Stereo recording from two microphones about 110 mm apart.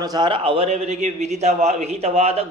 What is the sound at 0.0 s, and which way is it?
Speech, 35° right (ahead or behind).